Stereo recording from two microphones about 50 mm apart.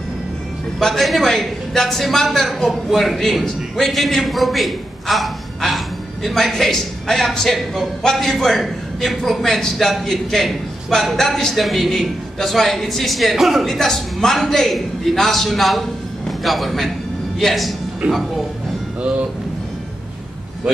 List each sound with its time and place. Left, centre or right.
0.7 s a man's voice: centre
13.7 s a man's voice: centre
18.0 s speech: right